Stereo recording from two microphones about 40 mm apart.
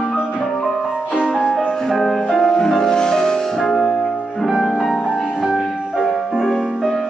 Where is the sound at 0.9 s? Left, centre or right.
Right.